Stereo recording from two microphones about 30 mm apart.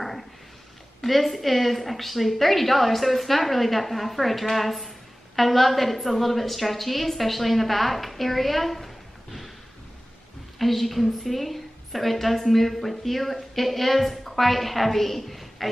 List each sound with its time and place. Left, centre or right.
1.0 s a woman's voice: centre
10.6 s a woman's voice: centre